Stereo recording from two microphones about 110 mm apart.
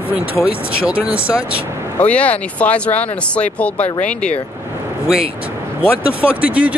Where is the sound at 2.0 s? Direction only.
15° left (ahead or behind).